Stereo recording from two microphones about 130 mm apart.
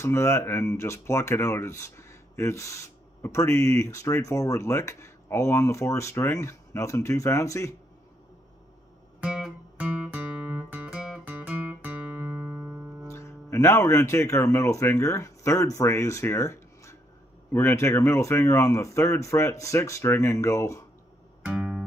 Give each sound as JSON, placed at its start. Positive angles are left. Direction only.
{"t": 0.0, "sound": "speech", "side_deg": 20}
{"t": 9.2, "sound": "music", "side_deg": -5}
{"t": 13.1, "sound": "speech", "side_deg": 20}
{"t": 21.5, "sound": "music", "side_deg": -5}